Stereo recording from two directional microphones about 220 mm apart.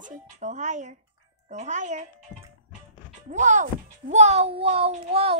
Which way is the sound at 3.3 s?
35° right (ahead or behind).